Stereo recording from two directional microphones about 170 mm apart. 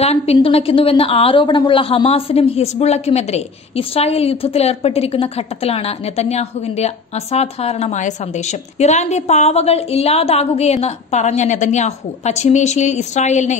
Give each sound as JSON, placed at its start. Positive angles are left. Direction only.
{"t": 0.0, "sound": "a woman's voice", "side_deg": 35}